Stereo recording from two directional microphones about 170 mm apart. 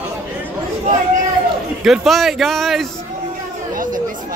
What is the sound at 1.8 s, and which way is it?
Speech, centre (ahead or behind).